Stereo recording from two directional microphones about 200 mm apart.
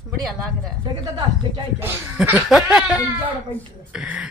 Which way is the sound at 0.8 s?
20° right (ahead or behind).